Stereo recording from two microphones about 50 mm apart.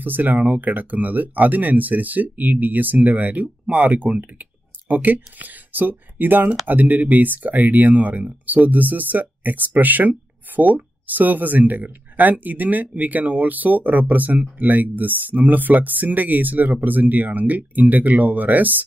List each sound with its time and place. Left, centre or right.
0.0 s speech: right